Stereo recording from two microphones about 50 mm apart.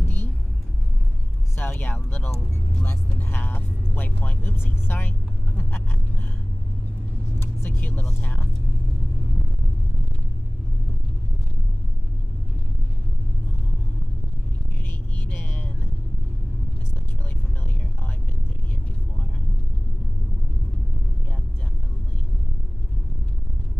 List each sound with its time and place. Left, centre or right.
0.0 s vehicle: left
1.6 s speech: left
7.3 s speech: left
15.1 s vehicle: left